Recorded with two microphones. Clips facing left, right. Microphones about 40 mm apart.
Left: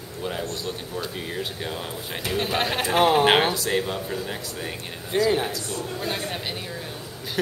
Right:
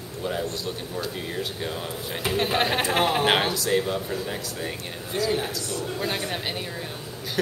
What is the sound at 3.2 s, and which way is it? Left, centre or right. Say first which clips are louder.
Speech: left 3 dB; centre.